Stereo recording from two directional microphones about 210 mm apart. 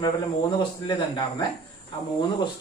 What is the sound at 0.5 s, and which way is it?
Speech, 20° left (ahead or behind).